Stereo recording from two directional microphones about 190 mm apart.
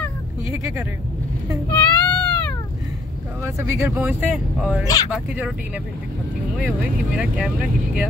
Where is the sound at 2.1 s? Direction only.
10° left (ahead or behind).